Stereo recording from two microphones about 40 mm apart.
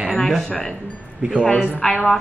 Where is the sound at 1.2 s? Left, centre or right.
Right.